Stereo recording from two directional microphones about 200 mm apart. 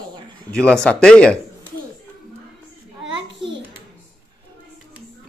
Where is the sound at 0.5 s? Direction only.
5° left (ahead or behind).